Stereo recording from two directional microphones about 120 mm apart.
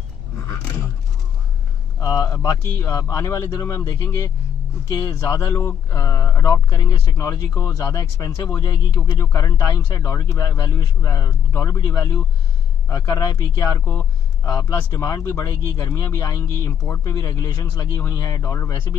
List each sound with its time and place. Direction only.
2.0 s speech: 30° left (ahead or behind)